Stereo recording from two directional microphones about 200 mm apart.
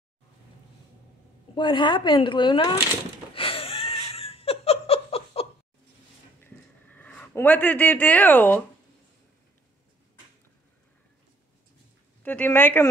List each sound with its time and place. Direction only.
1.5 s speech: 25° left (ahead or behind)
3.3 s laughter: 25° left (ahead or behind)
6.4 s a sound: 10° left (ahead or behind)
12.2 s speech: 10° left (ahead or behind)